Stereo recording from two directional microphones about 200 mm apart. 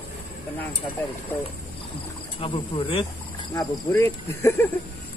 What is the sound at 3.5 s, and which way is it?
Speech, 15° left (ahead or behind).